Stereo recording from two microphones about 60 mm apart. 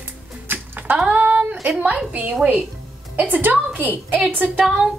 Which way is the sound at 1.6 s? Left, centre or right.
Right.